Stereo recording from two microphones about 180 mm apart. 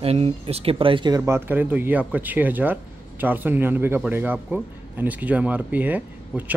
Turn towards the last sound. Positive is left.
turn(degrees=-10)  # may be behind; listen again after turning